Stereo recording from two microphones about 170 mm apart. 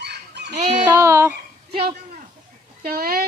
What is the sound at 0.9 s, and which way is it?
Speech, 15° right (ahead or behind).